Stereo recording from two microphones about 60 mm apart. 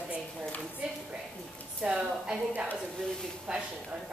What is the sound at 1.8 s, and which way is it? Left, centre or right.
A woman's voice, centre.